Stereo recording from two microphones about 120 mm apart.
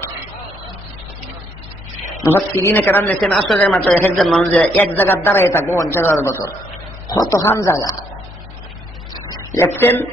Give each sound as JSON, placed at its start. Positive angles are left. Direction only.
{"t": 2.2, "sound": "a man's voice", "side_deg": 20}
{"t": 3.2, "sound": "a man's voice", "side_deg": 0}
{"t": 9.3, "sound": "a sound", "side_deg": 30}
{"t": 9.8, "sound": "a man's voice", "side_deg": 15}